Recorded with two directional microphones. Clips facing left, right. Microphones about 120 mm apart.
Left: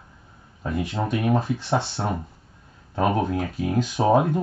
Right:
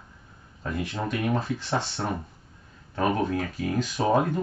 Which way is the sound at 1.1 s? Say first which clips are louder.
Left 5 dB; 15° left (ahead or behind).